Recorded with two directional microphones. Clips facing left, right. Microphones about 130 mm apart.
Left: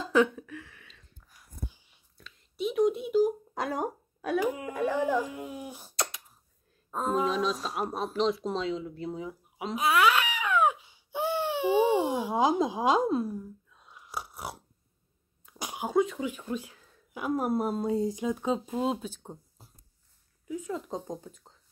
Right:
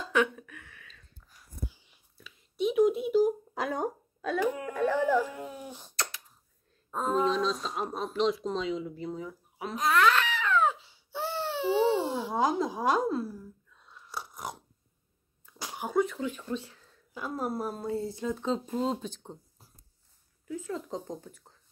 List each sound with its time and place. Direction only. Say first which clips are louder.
0.0 s a sound: left 3 dB; 30° left (ahead or behind)
2.1 s speech: right 3 dB; centre (ahead or behind)
9.1 s babbling: left 1 dB; 15° left (ahead or behind)
15.4 s speech: left 2 dB; 15° left (ahead or behind)
19.6 s a sound: left 3 dB; 25° left (ahead or behind)
20.4 s speech: left 1 dB; 15° left (ahead or behind)